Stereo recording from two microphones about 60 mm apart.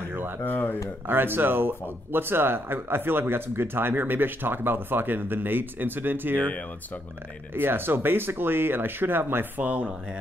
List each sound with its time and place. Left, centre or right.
0.4 s speech: left
1.0 s speech: right
7.5 s speech: right